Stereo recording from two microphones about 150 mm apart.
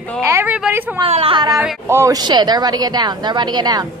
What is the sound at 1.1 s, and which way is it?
Speech, 40° right (ahead or behind).